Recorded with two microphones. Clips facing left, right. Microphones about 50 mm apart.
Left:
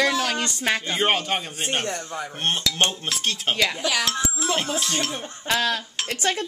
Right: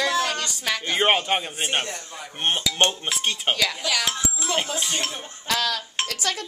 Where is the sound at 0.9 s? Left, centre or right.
Centre.